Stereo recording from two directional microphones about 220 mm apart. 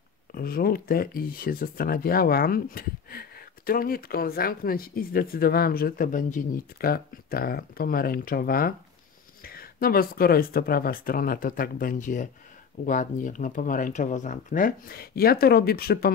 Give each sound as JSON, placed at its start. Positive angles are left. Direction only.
{"t": 0.3, "sound": "speech", "side_deg": 40}